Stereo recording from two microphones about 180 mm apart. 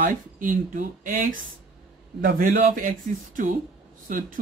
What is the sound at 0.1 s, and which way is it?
Speech, 50° right (ahead or behind).